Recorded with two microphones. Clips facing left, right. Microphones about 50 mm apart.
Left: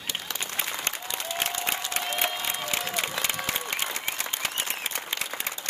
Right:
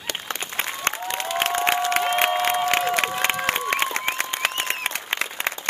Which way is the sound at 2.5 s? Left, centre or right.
Right.